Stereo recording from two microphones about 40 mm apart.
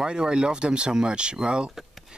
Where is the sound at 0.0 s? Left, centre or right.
Centre.